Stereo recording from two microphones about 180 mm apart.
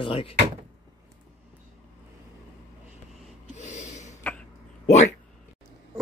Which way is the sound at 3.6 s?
40° left (ahead or behind).